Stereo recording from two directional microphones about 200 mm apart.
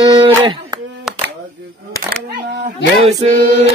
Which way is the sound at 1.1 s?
Centre (ahead or behind).